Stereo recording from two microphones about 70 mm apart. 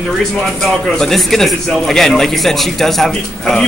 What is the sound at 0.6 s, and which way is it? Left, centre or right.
A man's voice, centre.